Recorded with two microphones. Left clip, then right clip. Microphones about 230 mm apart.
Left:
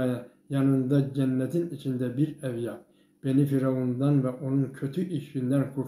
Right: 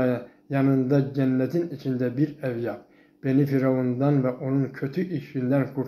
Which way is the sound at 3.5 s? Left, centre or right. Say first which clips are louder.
Right 4 dB; centre.